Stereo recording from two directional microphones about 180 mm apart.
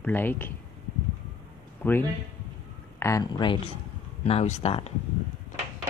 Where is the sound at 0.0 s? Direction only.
10° left (ahead or behind).